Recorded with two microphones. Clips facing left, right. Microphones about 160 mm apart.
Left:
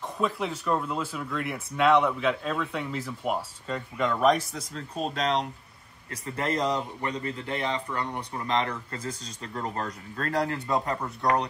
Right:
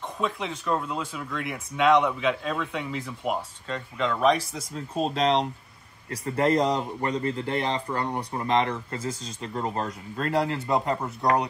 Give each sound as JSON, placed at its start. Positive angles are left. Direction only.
{"t": 0.2, "sound": "speech", "side_deg": 5}
{"t": 4.7, "sound": "a man's voice", "side_deg": -25}